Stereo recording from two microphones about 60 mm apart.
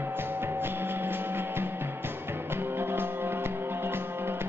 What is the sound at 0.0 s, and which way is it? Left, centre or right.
Music, right.